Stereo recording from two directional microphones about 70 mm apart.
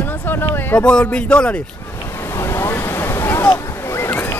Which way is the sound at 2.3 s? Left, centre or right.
Left.